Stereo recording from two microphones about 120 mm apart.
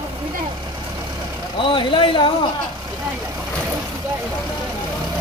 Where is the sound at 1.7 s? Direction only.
45° left (ahead or behind).